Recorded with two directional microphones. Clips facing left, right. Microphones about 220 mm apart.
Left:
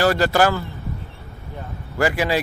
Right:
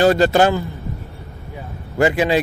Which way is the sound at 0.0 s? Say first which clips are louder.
Right 4 dB; 20° right (ahead or behind).